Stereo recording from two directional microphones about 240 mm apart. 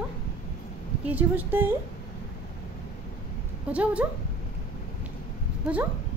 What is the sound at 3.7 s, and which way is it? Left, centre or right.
Speech, centre.